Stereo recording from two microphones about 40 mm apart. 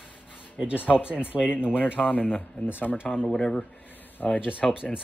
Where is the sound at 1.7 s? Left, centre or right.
Left.